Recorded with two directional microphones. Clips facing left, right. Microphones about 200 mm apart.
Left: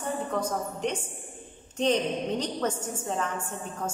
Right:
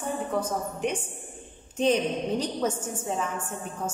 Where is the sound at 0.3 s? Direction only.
10° right (ahead or behind).